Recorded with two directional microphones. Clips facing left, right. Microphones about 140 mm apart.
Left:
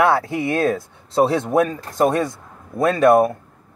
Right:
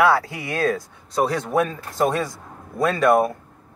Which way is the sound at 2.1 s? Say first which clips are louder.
Left 4 dB; 25° left (ahead or behind).